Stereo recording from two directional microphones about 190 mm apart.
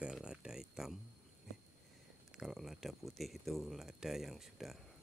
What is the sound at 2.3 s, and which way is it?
Speech, centre (ahead or behind).